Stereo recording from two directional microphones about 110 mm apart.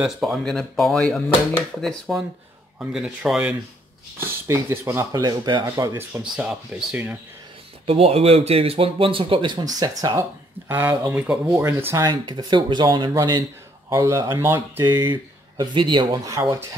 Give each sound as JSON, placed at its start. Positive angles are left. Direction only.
{"t": 0.0, "sound": "speech", "side_deg": 0}
{"t": 4.5, "sound": "speech", "side_deg": -25}
{"t": 5.7, "sound": "speech", "side_deg": -25}
{"t": 6.2, "sound": "speech", "side_deg": -10}
{"t": 7.8, "sound": "speech", "side_deg": -65}
{"t": 10.7, "sound": "speech", "side_deg": -20}
{"t": 12.1, "sound": "speech", "side_deg": -45}
{"t": 13.8, "sound": "speech", "side_deg": -25}
{"t": 15.5, "sound": "speech", "side_deg": -45}
{"t": 16.3, "sound": "speech", "side_deg": -30}